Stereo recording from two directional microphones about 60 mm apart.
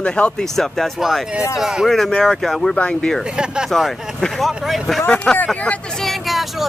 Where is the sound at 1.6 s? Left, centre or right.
Centre.